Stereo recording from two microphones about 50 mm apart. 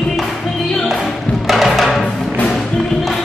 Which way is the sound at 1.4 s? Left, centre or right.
Centre.